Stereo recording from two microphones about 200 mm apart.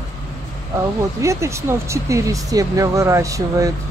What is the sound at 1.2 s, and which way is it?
Speech, 15° right (ahead or behind).